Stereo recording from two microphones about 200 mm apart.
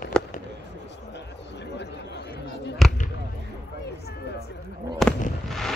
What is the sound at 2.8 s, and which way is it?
Speech, centre (ahead or behind).